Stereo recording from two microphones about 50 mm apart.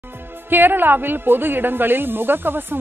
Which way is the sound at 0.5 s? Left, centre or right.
Right.